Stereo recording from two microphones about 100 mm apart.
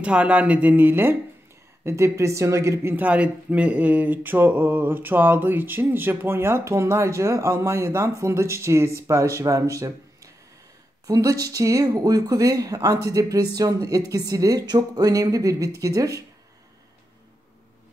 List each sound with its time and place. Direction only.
0.0 s speech: 10° right (ahead or behind); by 16.3 s 35° right (ahead or behind)